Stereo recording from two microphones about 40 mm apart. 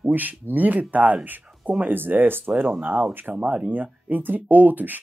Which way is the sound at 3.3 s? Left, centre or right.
Right.